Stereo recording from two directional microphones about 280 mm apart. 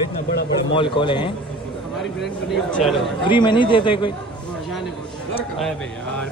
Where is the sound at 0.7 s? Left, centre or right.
Centre.